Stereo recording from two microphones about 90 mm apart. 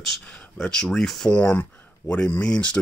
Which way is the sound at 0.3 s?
10° left (ahead or behind).